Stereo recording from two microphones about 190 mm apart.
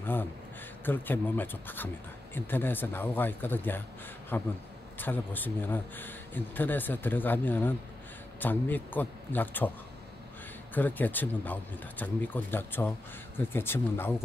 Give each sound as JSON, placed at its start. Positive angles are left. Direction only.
{"t": 0.0, "sound": "a man's voice", "side_deg": 10}
{"t": 10.7, "sound": "a man's voice", "side_deg": 10}